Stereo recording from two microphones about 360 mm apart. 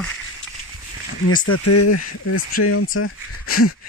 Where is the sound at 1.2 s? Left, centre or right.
Left.